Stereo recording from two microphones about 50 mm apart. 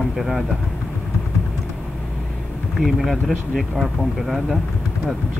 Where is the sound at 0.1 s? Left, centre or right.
Centre.